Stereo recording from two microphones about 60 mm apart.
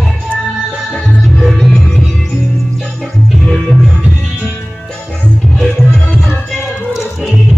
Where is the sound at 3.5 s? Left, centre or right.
Centre.